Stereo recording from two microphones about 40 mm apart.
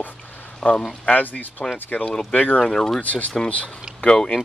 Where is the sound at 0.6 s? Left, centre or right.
Left.